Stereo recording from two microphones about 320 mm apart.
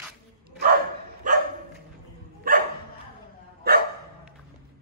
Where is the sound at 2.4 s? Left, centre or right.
Right.